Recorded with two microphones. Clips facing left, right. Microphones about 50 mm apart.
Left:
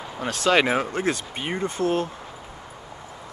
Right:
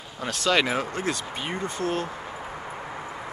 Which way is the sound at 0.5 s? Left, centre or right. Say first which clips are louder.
Left 3 dB; centre.